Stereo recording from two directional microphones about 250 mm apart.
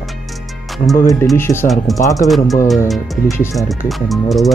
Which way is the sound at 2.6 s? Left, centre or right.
Centre.